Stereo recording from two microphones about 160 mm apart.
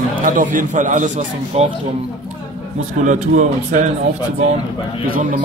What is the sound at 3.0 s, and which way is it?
Speech, 50° right (ahead or behind).